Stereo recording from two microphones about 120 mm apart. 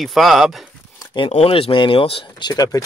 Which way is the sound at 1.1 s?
50° left (ahead or behind).